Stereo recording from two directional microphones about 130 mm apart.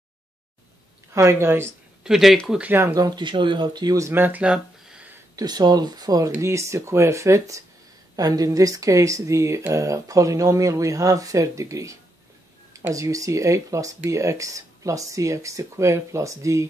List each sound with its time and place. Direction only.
1.1 s speech: 20° right (ahead or behind)
2.0 s speech: 5° right (ahead or behind)
2.9 s speech: 30° right (ahead or behind); by 5.1 s 10° right (ahead or behind)
5.3 s speech: 30° right (ahead or behind)